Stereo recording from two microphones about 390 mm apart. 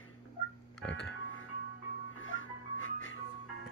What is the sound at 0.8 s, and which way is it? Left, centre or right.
Music, left.